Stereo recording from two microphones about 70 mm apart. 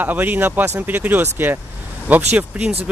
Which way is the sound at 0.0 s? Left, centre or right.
Right.